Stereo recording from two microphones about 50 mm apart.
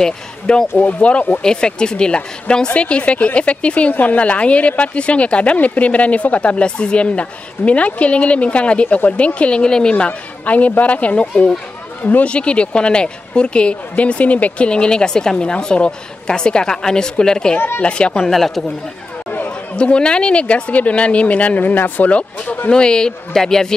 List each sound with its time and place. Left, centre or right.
0.0 s speech: centre
0.7 s a woman's voice: left
1.4 s a woman's voice: centre
8.8 s speech: left
9.1 s a woman's voice: left
12.3 s a woman's voice: left
18.3 s speech: centre
19.7 s a woman's voice: centre
22.7 s speech: centre